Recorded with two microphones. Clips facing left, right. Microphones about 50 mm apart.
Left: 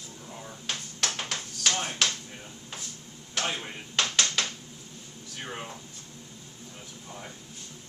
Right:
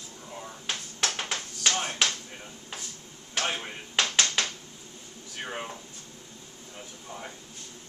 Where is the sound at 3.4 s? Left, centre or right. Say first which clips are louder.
Right 1 dB; centre.